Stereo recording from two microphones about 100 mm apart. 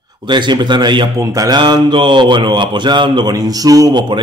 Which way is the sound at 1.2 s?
35° right (ahead or behind).